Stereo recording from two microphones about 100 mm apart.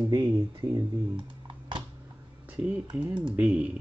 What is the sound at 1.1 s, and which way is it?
Computer keyboard, 50° right (ahead or behind).